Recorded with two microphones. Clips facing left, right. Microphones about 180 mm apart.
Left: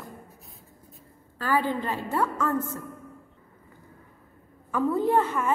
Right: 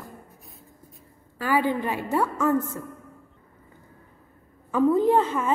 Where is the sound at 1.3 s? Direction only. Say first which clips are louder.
Right 2 dB; 15° right (ahead or behind).